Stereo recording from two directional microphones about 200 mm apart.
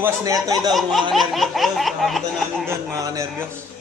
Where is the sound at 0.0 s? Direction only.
15° right (ahead or behind).